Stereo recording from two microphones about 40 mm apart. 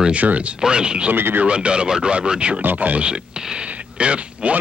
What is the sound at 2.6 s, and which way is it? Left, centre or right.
Speech, right.